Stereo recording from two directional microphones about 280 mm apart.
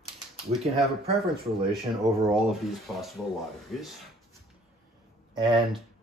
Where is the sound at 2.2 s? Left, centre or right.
Centre.